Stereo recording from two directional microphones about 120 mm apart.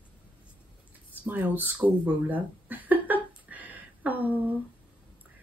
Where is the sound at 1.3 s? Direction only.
15° right (ahead or behind).